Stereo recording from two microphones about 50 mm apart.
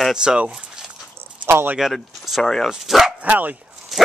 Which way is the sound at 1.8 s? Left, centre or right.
Centre.